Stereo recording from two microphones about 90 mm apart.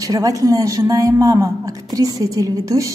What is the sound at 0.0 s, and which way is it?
A woman's voice, 40° right (ahead or behind).